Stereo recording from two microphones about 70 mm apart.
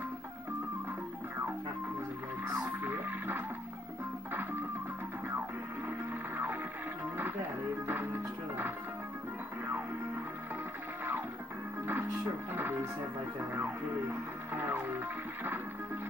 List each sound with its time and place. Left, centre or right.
2.6 s music: right
5.9 s music: right
7.8 s music: right
11.8 s music: right
13.4 s speech: right
14.7 s music: right